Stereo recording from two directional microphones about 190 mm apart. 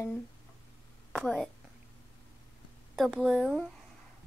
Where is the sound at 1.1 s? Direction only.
5° left (ahead or behind).